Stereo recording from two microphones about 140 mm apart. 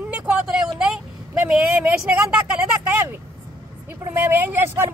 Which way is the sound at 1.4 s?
5° right (ahead or behind).